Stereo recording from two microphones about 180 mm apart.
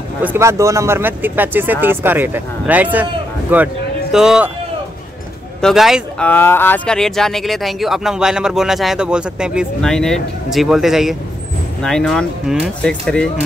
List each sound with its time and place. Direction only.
0.2 s speech: 15° right (ahead or behind)
5.6 s speech: centre (ahead or behind)